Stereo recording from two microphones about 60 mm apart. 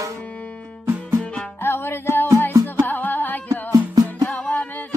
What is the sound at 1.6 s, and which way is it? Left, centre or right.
Music, left.